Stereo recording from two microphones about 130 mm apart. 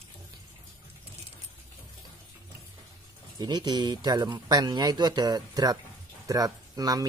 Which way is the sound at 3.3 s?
30° right (ahead or behind).